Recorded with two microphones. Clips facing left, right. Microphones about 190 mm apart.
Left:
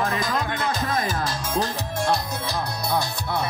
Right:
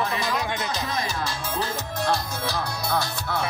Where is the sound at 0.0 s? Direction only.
45° left (ahead or behind).